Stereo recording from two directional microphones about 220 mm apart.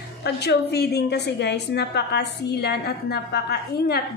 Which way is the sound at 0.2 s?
50° left (ahead or behind).